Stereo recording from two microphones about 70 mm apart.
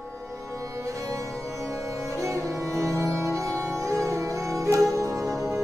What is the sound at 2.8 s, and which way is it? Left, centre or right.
Music, right.